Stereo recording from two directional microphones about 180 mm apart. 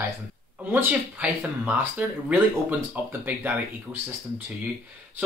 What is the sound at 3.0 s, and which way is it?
Speech, 10° right (ahead or behind).